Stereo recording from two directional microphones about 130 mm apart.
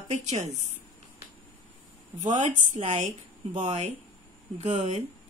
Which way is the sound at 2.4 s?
60° right (ahead or behind).